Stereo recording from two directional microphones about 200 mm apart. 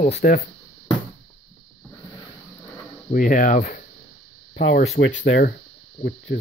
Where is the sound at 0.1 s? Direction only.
50° left (ahead or behind).